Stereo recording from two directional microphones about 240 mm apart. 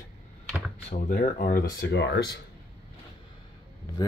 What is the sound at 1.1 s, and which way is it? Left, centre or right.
Speech, left.